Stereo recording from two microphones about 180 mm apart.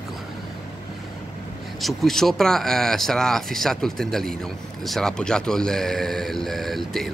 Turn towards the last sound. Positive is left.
turn(degrees=0)  # may be behind; listen again after turning